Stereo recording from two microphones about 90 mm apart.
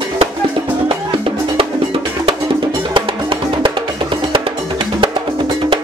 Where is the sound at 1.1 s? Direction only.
90° right.